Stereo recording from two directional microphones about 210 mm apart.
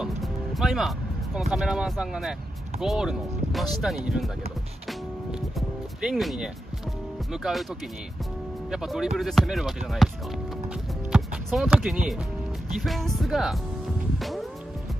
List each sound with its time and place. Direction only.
0.0 s speech: centre (ahead or behind)
6.0 s speech: centre (ahead or behind)
8.6 s speech: centre (ahead or behind)
11.1 s music: centre (ahead or behind)
12.7 s speech: centre (ahead or behind)
14.1 s music: centre (ahead or behind)